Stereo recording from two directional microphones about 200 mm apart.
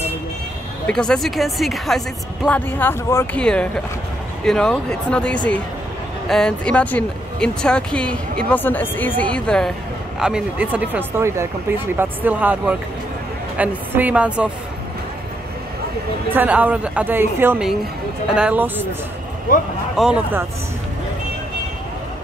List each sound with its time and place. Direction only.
0.8 s a woman's voice: 5° left (ahead or behind)
16.3 s a woman's voice: 10° right (ahead or behind)
19.5 s speech: 45° left (ahead or behind)
20.0 s a woman's voice: 5° right (ahead or behind)